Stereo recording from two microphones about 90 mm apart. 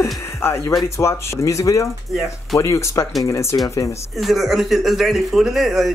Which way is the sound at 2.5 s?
35° left (ahead or behind).